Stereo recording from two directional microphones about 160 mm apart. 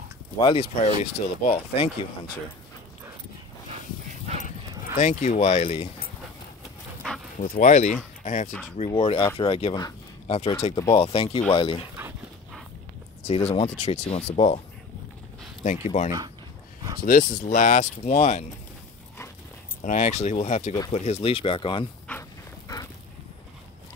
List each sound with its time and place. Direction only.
0.4 s speech: 35° left (ahead or behind)
4.4 s dog: 55° left (ahead or behind)
7.3 s speech: 60° left (ahead or behind); by 11.8 s 35° left (ahead or behind)
13.3 s speech: 40° left (ahead or behind)
15.6 s speech: 45° left (ahead or behind)
17.0 s speech: 55° left (ahead or behind)
19.8 s speech: 50° left (ahead or behind); by 21.8 s 35° left (ahead or behind)